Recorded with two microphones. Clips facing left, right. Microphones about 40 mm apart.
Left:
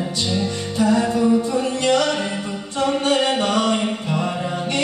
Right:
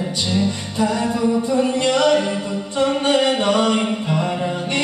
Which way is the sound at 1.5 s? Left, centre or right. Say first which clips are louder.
Right 1 dB; right.